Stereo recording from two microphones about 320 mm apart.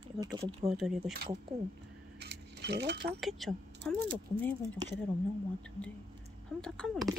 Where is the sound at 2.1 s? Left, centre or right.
Right.